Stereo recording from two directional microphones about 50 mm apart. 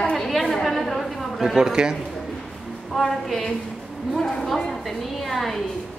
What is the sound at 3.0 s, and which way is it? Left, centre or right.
A woman's voice, centre.